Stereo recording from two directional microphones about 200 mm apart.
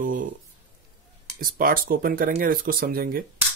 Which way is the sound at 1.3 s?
45° right (ahead or behind).